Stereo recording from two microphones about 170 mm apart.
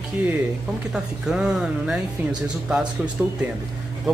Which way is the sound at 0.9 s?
5° right (ahead or behind).